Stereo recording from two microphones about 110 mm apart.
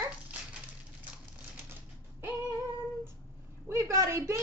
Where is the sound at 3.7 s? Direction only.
25° right (ahead or behind).